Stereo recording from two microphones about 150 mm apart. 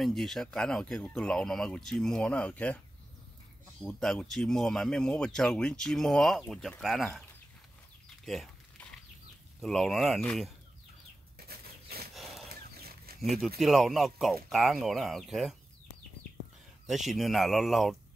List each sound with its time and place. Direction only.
0.0 s speech: centre (ahead or behind)
3.8 s speech: 5° left (ahead or behind)
8.3 s a sound: centre (ahead or behind)
9.6 s speech: centre (ahead or behind)
11.4 s a sound: 90° right
12.4 s pig: 90° right
13.2 s speech: centre (ahead or behind)
16.8 s speech: centre (ahead or behind)